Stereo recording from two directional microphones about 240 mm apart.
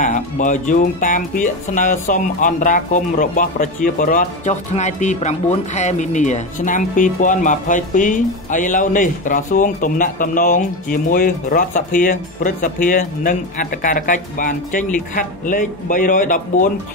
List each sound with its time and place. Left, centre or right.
0.0 s speech: left